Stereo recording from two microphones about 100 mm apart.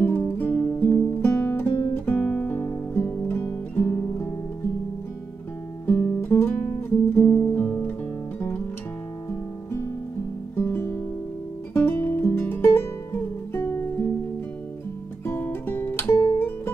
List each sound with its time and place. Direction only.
0.0 s guitar: 20° left (ahead or behind)
2.2 s music: 15° left (ahead or behind)
3.4 s guitar: 20° left (ahead or behind)
5.9 s guitar: 20° left (ahead or behind)
7.2 s music: 25° left (ahead or behind)
9.3 s guitar: 30° left (ahead or behind)
10.5 s music: 20° left (ahead or behind)
15.2 s guitar: 20° left (ahead or behind)